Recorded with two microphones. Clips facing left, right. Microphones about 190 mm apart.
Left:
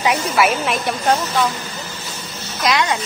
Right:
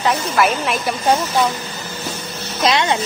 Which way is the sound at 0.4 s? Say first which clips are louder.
Even; centre (ahead or behind).